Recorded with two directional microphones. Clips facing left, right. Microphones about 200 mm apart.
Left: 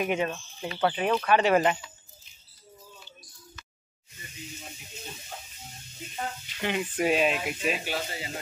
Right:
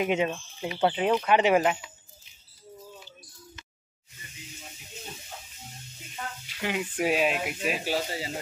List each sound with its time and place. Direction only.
0.0 s speech: 20° right (ahead or behind)
1.6 s speech: 5° right (ahead or behind)
6.6 s speech: 5° right (ahead or behind)
7.8 s speech: 35° right (ahead or behind)